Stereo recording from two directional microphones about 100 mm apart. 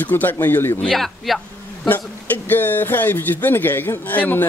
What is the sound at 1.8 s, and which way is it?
Speech, 20° left (ahead or behind).